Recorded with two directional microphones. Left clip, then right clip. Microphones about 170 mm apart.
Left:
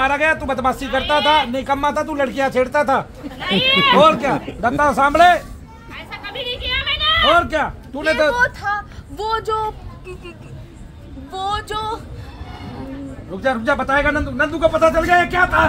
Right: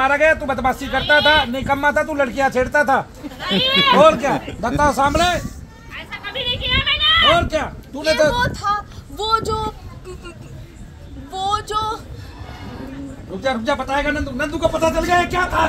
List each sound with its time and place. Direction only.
0.0 s speech: 35° right (ahead or behind); by 4.4 s 50° right (ahead or behind)
4.6 s speech: 25° right (ahead or behind)
5.9 s a sound: 90° left
7.5 s speech: 30° right (ahead or behind)
8.6 s child singing: 10° left (ahead or behind)
11.3 s speech: 20° left (ahead or behind)
13.4 s speech: 5° right (ahead or behind)